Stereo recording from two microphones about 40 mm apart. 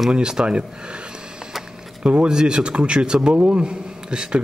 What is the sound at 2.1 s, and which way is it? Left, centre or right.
A man's voice, right.